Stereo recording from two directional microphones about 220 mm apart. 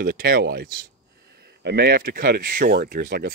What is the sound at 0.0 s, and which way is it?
Speech, 45° right (ahead or behind).